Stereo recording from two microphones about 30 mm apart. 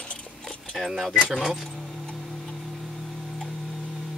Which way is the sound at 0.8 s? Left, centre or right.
Centre.